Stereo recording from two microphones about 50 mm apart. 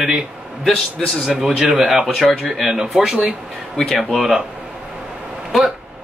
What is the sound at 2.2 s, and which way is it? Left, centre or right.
Speech, centre.